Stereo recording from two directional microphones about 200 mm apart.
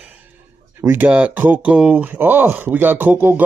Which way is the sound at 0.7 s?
10° right (ahead or behind).